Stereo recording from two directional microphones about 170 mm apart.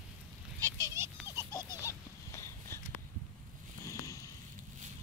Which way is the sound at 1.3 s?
20° left (ahead or behind).